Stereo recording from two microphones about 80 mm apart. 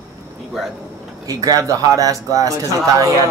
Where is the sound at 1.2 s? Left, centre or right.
Right.